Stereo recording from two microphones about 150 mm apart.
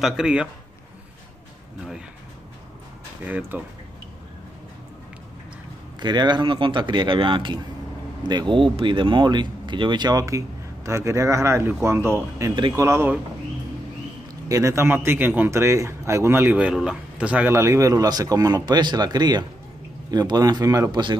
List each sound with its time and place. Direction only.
0.0 s speech: 5° right (ahead or behind)
3.3 s a man's voice: 10° right (ahead or behind)
5.9 s a man's voice: 30° right (ahead or behind)
14.5 s a man's voice: 20° right (ahead or behind)